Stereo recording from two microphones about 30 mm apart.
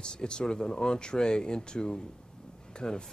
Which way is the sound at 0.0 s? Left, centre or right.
Left.